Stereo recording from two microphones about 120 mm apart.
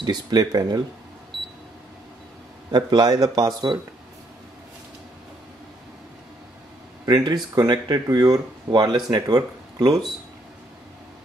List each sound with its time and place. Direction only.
0.0 s speech: 35° right (ahead or behind)
2.7 s speech: 35° right (ahead or behind)
7.1 s speech: 35° right (ahead or behind)